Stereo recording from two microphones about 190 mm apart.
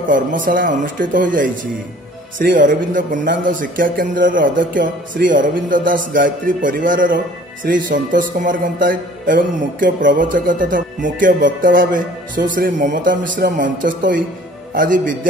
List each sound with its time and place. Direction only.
0.1 s a man's voice: 45° right (ahead or behind)